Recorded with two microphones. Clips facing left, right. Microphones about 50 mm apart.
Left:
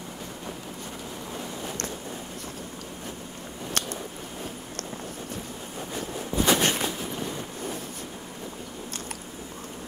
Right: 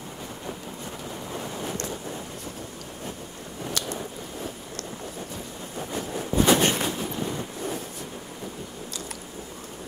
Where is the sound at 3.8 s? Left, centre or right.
Left.